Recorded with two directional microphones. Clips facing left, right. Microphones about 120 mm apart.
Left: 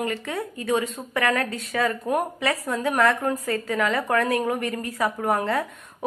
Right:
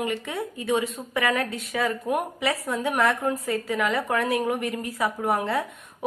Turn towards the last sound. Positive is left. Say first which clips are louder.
# left 1 dB
turn(degrees=-5)  # may be behind; listen again after turning